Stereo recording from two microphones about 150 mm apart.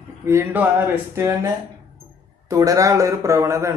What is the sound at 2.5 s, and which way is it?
Speech, 20° right (ahead or behind).